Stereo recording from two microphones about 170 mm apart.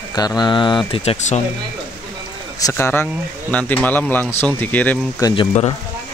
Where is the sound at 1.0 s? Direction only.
40° left (ahead or behind).